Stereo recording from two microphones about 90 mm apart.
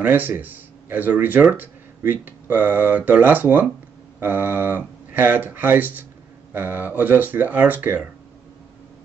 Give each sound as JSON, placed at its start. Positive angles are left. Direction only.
{"t": 0.0, "sound": "speech", "side_deg": -20}